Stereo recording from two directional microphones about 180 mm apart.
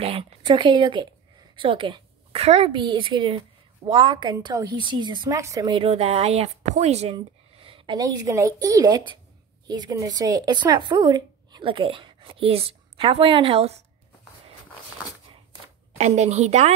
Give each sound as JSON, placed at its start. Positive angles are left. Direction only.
{"t": 0.0, "sound": "a woman's voice", "side_deg": -30}
{"t": 16.0, "sound": "a woman's voice", "side_deg": -40}